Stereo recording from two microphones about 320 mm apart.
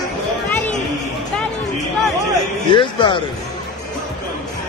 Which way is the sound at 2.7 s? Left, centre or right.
Centre.